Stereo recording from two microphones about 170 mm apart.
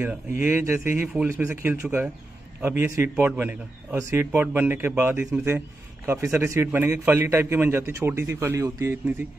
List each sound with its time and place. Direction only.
0.0 s a man's voice: 10° right (ahead or behind)